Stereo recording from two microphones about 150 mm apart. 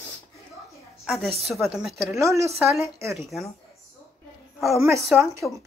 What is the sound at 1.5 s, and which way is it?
Speech, centre (ahead or behind).